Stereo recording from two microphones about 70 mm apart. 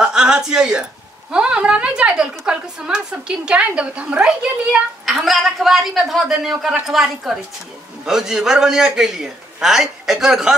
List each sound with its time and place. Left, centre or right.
0.0 s a woman's voice: centre